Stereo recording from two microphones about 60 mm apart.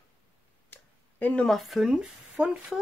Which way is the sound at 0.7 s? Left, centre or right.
Left.